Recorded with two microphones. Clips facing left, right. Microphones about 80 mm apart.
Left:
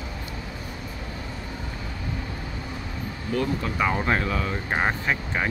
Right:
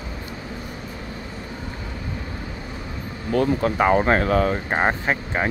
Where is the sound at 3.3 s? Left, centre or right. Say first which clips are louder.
Right 7 dB; right.